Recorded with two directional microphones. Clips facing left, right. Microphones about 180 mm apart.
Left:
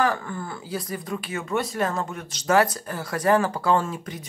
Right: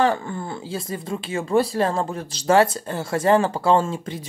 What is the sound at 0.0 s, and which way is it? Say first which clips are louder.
Speech: right 3 dB; 25° right (ahead or behind).